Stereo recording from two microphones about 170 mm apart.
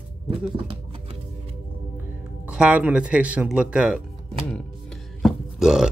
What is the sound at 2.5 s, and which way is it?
Speech, 5° right (ahead or behind).